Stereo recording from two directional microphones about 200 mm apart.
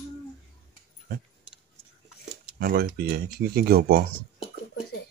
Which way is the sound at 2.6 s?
50° right (ahead or behind).